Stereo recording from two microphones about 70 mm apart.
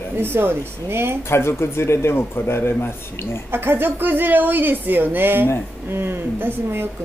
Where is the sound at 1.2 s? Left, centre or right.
Left.